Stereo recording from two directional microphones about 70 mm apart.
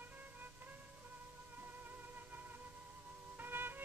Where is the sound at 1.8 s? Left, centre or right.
Right.